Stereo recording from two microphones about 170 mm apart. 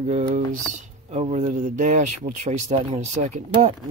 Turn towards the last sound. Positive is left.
turn(degrees=-45)  # may be behind; listen again after turning